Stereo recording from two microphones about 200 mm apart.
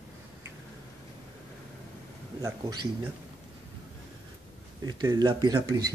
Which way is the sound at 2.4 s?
15° right (ahead or behind).